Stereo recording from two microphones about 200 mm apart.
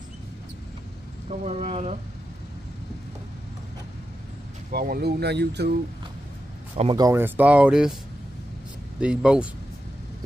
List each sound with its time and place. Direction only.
1.3 s speech: 35° right (ahead or behind)
4.6 s speech: 50° right (ahead or behind)
6.7 s speech: 25° right (ahead or behind); by 7.9 s 5° right (ahead or behind)
9.0 s speech: 5° right (ahead or behind)